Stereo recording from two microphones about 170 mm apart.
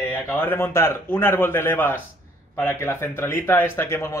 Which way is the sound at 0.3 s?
10° left (ahead or behind).